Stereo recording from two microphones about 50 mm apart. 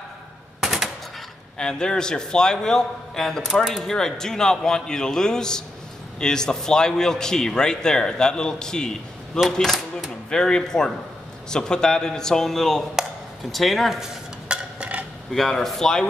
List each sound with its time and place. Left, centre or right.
0.6 s machine gun: centre
1.6 s a man's voice: centre
9.4 s speech: centre
10.3 s a man's voice: centre
14.5 s a sound: right
15.3 s a man's voice: centre